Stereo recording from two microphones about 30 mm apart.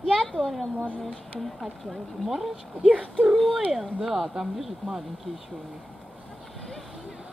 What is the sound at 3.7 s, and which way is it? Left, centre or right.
Speech, centre.